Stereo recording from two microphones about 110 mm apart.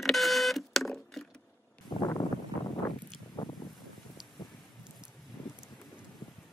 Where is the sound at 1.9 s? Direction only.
50° left (ahead or behind).